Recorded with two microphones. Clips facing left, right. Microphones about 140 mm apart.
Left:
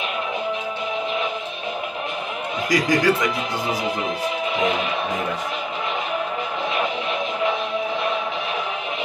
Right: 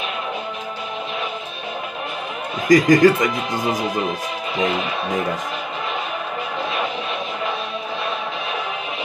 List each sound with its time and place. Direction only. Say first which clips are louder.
2.7 s speech: right 7 dB; 45° right (ahead or behind)